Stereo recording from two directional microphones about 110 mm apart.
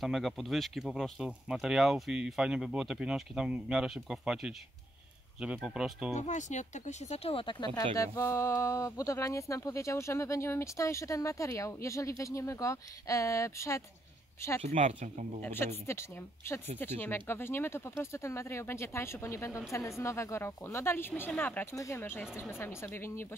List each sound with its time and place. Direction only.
0.0 s speech: centre (ahead or behind)
5.6 s speech: 5° right (ahead or behind)
6.1 s speech: 90° left; by 7.8 s 40° left (ahead or behind)
7.9 s speech: 25° left (ahead or behind)
14.6 s speech: 75° right (ahead or behind)
15.4 s speech: 20° left (ahead or behind)
21.7 s speech: 30° left (ahead or behind)
22.0 s speech: 20° left (ahead or behind)